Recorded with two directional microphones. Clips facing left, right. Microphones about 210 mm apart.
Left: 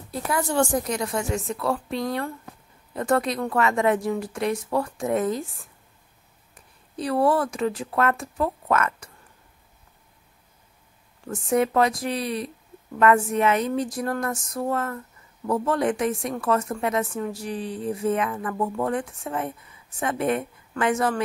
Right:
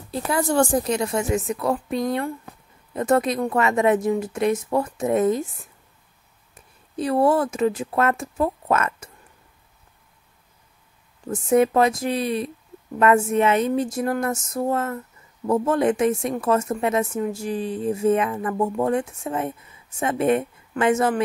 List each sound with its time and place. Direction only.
0.1 s speech: 30° right (ahead or behind)
6.5 s speech: 25° right (ahead or behind)
11.2 s speech: 20° right (ahead or behind)